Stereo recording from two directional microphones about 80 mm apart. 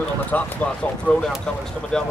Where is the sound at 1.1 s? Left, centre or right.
Centre.